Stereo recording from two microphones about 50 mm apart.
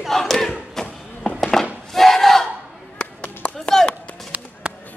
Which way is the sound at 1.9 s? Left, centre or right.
Centre.